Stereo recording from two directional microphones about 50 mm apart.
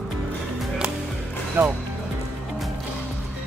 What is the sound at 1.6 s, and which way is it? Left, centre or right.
Speech, right.